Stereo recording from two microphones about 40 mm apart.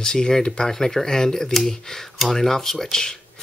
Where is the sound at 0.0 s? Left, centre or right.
Centre.